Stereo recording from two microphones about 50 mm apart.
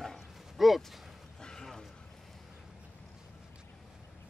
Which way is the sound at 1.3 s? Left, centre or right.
Centre.